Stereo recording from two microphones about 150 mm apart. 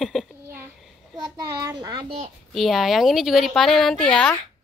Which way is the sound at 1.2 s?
25° right (ahead or behind).